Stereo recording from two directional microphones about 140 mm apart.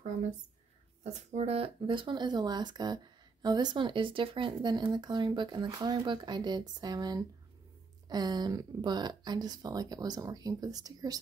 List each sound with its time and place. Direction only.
1.0 s speech: 50° right (ahead or behind); by 11.1 s 25° right (ahead or behind)